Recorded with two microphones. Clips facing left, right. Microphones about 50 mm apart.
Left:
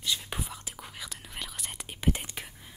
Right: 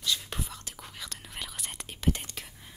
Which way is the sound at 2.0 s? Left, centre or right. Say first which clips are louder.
Left 1 dB; centre.